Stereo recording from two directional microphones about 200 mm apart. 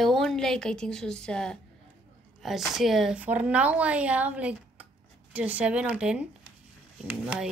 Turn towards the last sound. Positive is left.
turn(degrees=-5)  # may be behind; listen again after turning